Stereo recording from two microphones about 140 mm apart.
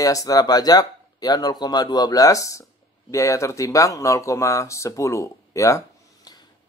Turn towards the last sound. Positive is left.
turn(degrees=25)  # may be behind; listen again after turning